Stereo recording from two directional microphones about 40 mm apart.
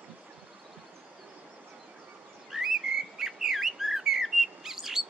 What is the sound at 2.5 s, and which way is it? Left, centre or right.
Bird, centre.